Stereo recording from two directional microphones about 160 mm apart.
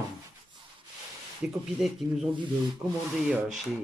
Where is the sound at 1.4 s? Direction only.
10° right (ahead or behind).